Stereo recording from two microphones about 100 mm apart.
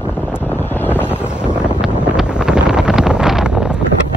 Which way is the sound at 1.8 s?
5° right (ahead or behind).